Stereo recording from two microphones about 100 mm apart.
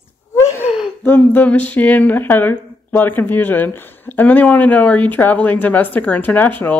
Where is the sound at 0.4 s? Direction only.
30° left (ahead or behind).